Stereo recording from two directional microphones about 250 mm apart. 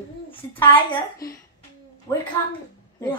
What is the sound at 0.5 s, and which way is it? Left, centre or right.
Speech, centre.